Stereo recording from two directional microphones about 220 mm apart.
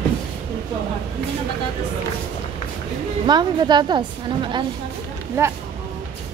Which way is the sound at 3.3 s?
20° right (ahead or behind).